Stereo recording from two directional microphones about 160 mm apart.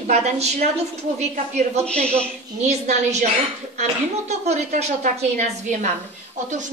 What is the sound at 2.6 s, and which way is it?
A woman's voice, 45° right (ahead or behind).